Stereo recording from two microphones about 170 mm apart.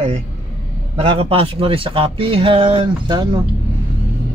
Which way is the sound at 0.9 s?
35° right (ahead or behind).